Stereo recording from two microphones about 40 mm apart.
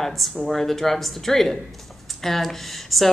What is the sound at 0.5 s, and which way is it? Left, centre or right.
Speech, centre.